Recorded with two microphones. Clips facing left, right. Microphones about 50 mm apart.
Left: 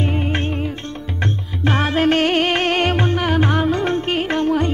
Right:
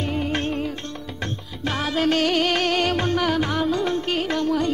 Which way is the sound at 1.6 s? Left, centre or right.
Left.